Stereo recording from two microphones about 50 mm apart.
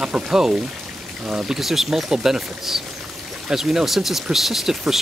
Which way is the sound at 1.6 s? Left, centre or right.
Centre.